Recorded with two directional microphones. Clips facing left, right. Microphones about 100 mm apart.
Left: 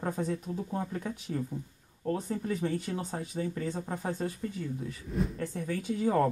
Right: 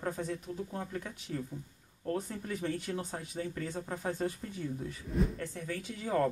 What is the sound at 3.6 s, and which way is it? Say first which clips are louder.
Speech: left 3 dB; 30° left (ahead or behind).